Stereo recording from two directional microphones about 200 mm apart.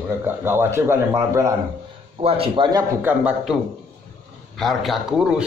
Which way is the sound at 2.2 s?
30° right (ahead or behind).